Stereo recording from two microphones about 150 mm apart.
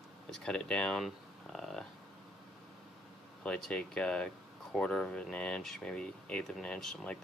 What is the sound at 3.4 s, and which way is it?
Speech, 5° left (ahead or behind).